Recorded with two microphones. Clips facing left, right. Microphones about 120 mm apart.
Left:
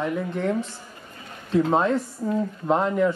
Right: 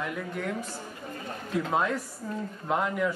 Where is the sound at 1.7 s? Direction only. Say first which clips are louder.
Left 6 dB; 30° left (ahead or behind).